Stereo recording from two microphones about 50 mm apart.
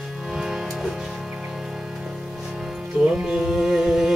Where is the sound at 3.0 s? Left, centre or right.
Centre.